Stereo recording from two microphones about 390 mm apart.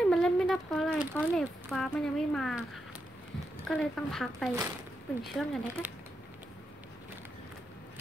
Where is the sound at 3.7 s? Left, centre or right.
Centre.